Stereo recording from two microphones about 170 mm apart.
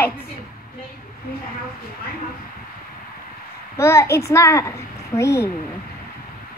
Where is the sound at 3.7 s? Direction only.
15° left (ahead or behind).